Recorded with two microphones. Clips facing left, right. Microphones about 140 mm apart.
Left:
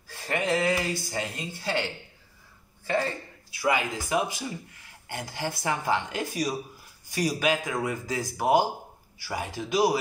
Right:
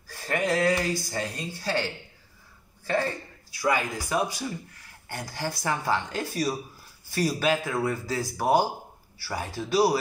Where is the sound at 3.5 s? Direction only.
20° left (ahead or behind).